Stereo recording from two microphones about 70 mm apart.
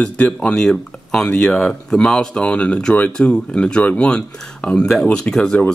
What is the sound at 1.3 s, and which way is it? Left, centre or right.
Speech, centre.